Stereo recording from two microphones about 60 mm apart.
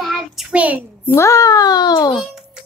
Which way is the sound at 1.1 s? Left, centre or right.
Left.